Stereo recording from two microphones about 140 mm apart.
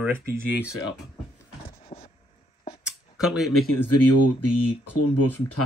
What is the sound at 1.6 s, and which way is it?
Vehicle, 45° left (ahead or behind).